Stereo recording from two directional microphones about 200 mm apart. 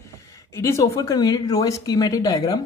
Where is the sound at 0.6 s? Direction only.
15° left (ahead or behind).